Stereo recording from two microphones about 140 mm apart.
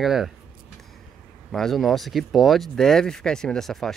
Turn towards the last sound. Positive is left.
turn(degrees=5)  # may be behind; listen again after turning